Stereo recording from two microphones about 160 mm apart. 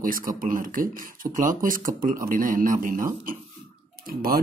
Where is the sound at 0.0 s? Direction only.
60° right (ahead or behind).